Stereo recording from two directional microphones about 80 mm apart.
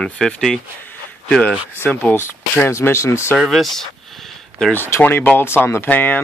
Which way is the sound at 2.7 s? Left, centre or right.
Left.